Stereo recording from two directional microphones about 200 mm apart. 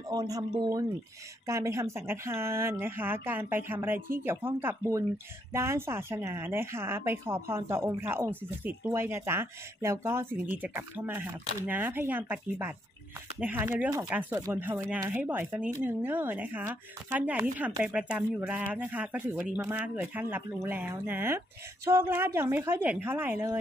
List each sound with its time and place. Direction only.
0.1 s a man's voice: 20° right (ahead or behind)